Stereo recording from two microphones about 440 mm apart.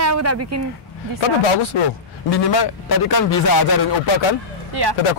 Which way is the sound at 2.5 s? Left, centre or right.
Left.